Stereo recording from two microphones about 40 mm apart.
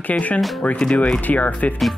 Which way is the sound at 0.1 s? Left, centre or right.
Left.